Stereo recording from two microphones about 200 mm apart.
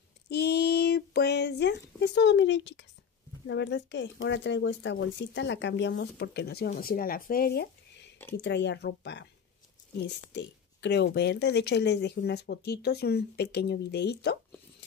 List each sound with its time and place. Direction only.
0.3 s speech: 55° left (ahead or behind)